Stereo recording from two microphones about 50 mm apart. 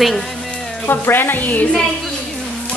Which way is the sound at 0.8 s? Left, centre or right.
Left.